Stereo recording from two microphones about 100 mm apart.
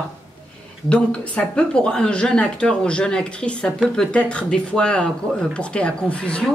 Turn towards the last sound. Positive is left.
turn(degrees=10)  # may be behind; listen again after turning